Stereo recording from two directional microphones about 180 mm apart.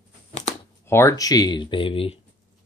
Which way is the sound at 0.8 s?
15° left (ahead or behind).